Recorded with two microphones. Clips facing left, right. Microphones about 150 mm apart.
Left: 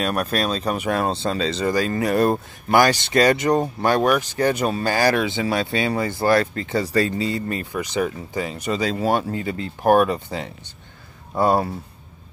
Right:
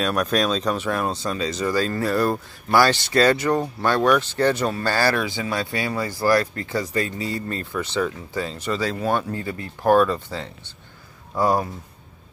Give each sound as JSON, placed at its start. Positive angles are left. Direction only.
{"t": 0.0, "sound": "speech", "side_deg": 5}
{"t": 0.9, "sound": "speech", "side_deg": 25}
{"t": 1.7, "sound": "speech", "side_deg": 15}
{"t": 7.2, "sound": "speech", "side_deg": 15}